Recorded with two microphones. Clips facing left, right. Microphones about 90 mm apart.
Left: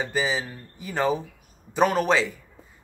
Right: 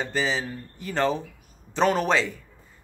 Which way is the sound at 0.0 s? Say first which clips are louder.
Even; 5° left (ahead or behind).